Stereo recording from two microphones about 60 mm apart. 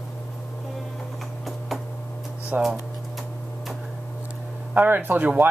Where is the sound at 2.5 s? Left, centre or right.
Right.